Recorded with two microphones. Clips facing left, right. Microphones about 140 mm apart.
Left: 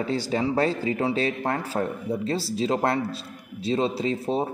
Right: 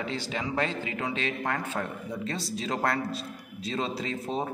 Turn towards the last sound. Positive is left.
turn(degrees=30)  # may be behind; listen again after turning